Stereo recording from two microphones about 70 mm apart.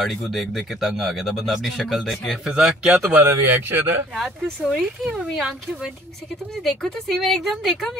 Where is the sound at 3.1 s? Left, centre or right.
Right.